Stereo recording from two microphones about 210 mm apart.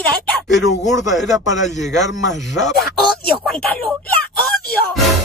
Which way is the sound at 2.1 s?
60° left (ahead or behind).